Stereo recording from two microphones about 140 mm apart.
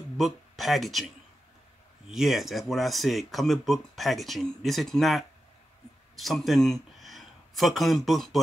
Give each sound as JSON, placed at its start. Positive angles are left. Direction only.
{"t": 0.2, "sound": "speech", "side_deg": 0}